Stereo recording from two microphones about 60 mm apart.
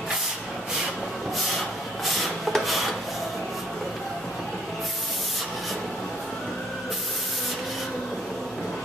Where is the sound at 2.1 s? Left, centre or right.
Centre.